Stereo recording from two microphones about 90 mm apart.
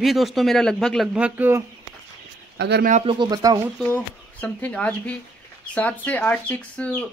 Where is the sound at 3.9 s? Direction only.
15° left (ahead or behind).